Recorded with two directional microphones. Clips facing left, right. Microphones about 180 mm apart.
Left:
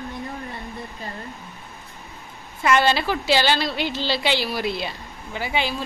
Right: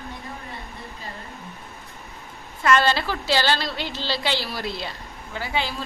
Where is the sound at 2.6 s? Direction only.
15° left (ahead or behind).